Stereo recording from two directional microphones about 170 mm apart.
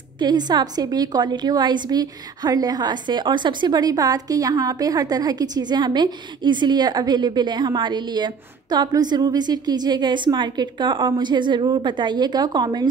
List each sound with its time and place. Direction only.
0.2 s a woman's voice: 25° right (ahead or behind)